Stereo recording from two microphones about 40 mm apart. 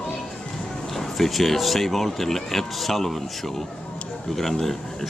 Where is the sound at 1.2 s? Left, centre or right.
Centre.